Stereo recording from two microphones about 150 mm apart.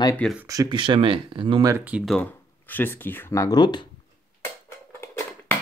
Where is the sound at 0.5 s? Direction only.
25° right (ahead or behind).